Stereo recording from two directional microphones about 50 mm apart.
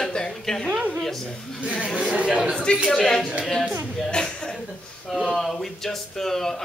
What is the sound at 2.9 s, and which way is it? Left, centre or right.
Speech, centre.